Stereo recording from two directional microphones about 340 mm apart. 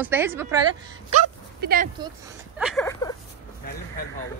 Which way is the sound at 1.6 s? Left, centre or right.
Right.